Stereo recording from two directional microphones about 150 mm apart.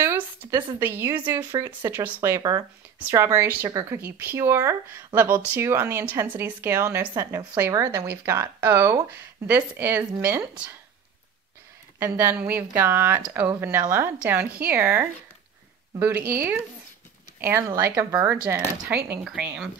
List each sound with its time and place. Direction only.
0.0 s a woman's voice: 15° right (ahead or behind)
12.0 s speech: 15° right (ahead or behind)